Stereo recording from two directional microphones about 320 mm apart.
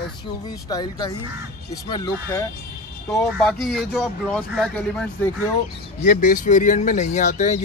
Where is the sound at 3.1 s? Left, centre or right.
Centre.